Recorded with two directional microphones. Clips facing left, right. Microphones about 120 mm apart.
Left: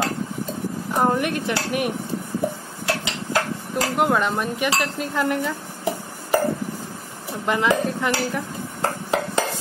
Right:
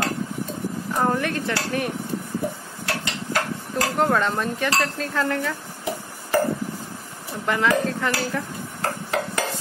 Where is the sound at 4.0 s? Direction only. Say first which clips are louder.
Left 1 dB; 10° left (ahead or behind).